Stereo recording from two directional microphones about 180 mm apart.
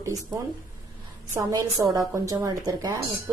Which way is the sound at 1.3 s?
20° right (ahead or behind).